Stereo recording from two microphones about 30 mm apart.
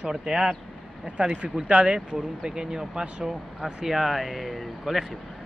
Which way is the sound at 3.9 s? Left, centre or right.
Centre.